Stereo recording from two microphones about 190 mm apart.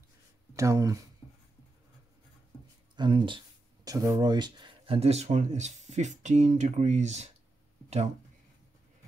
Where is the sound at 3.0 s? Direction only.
25° right (ahead or behind).